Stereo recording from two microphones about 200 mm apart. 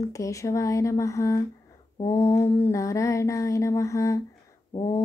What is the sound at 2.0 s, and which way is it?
A woman's voice, 15° left (ahead or behind).